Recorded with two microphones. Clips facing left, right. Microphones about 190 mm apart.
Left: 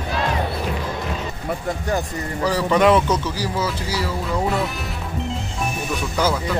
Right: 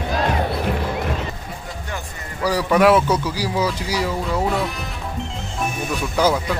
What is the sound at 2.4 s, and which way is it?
Speech, 10° right (ahead or behind).